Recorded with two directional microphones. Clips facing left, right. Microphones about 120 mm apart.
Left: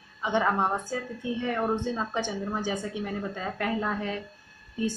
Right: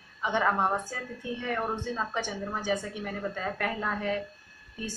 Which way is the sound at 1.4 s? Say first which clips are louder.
Left 4 dB; 20° left (ahead or behind).